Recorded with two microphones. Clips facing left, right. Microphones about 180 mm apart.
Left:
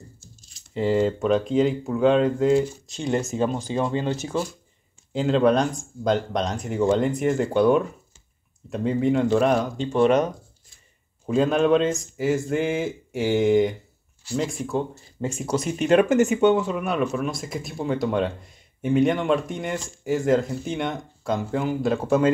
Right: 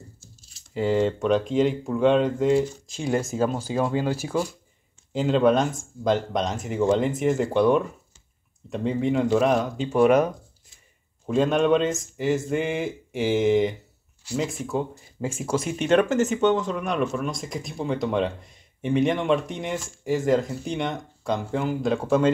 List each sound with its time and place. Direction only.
0.2 s speech: 5° right (ahead or behind)